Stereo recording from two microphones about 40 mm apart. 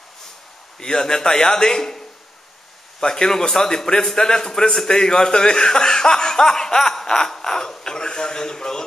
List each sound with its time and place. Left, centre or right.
0.7 s a man's voice: centre